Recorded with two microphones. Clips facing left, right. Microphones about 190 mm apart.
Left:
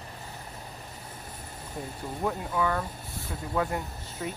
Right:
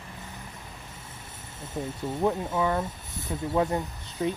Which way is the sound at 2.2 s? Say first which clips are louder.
Right 3 dB; 20° right (ahead or behind).